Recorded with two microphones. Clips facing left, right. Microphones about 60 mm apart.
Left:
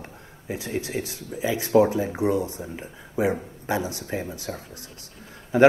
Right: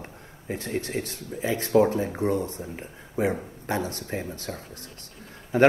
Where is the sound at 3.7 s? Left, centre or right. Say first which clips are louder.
Left 2 dB; right.